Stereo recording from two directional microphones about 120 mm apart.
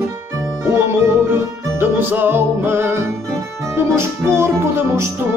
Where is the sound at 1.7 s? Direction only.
15° right (ahead or behind).